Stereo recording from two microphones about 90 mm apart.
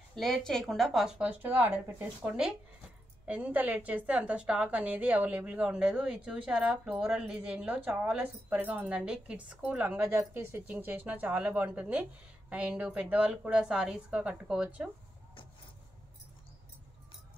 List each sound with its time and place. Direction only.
0.1 s a woman's voice: 5° left (ahead or behind)
1.2 s a woman's voice: 15° right (ahead or behind)